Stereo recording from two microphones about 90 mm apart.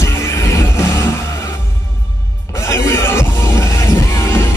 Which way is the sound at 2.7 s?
30° left (ahead or behind).